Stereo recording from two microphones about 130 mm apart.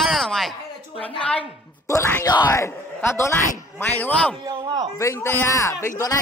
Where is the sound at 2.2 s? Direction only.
30° left (ahead or behind); by 4.4 s 10° left (ahead or behind).